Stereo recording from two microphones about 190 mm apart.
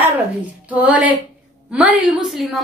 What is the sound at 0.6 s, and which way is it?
A woman's voice, 10° right (ahead or behind).